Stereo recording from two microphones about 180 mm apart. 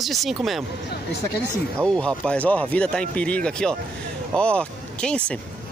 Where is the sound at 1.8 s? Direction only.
5° left (ahead or behind).